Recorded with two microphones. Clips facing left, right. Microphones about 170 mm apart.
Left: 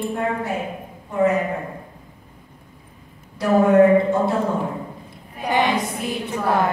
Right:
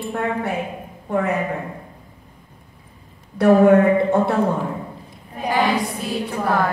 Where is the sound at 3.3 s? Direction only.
60° right (ahead or behind).